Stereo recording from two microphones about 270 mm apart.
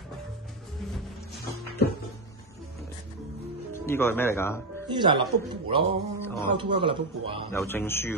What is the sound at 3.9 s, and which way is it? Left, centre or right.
Speech, centre.